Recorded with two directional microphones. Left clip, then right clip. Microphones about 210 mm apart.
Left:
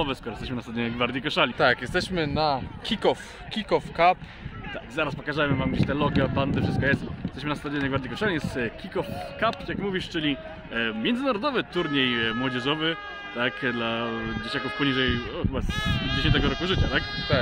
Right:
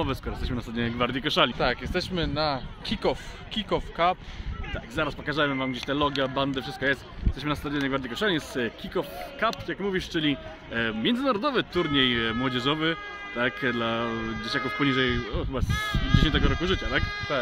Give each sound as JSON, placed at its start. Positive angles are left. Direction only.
{"t": 0.0, "sound": "speech", "side_deg": 5}
{"t": 1.6, "sound": "speech", "side_deg": 40}
{"t": 4.9, "sound": "speech", "side_deg": 0}
{"t": 15.7, "sound": "speech", "side_deg": 20}
{"t": 16.2, "sound": "speech", "side_deg": -15}
{"t": 17.0, "sound": "speech", "side_deg": 20}